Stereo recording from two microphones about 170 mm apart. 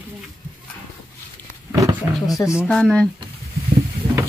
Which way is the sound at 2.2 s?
20° left (ahead or behind).